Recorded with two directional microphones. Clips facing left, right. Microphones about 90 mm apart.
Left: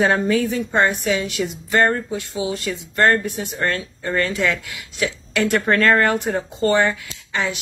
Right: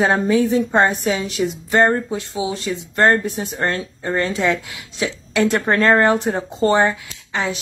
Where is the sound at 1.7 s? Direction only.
20° right (ahead or behind).